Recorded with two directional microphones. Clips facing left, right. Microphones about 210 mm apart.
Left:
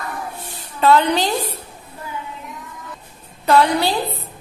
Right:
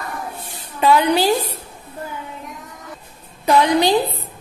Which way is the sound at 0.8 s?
10° right (ahead or behind).